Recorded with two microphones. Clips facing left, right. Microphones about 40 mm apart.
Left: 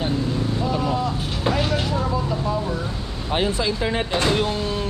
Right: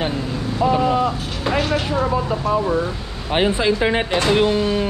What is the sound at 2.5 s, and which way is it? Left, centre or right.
Speech, right.